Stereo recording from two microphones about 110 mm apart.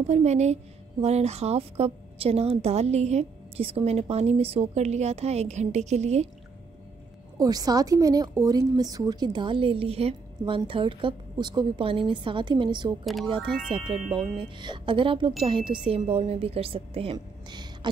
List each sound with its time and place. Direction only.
0.0 s a woman's voice: 90° right
1.0 s a woman's voice: 75° right (ahead or behind)
7.3 s speech: 35° right (ahead or behind); by 10.1 s 65° right (ahead or behind)
10.4 s a woman's voice: 50° right (ahead or behind)
13.0 s speech: centre (ahead or behind)
13.3 s a woman's voice: 50° right (ahead or behind)